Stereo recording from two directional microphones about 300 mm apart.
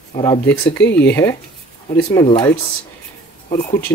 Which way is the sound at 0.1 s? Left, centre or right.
Centre.